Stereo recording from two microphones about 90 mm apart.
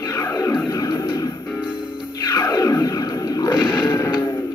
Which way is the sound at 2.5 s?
40° left (ahead or behind).